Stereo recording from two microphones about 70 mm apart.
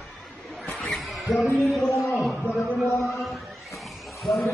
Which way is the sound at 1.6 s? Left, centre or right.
Centre.